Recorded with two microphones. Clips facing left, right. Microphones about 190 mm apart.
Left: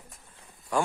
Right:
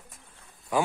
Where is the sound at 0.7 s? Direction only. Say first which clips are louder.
Right 1 dB; 5° right (ahead or behind).